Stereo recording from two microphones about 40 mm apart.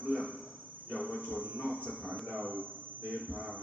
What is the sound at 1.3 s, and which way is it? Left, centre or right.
A man's voice, right.